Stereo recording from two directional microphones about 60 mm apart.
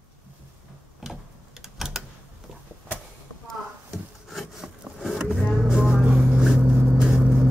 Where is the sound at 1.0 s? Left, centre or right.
Centre.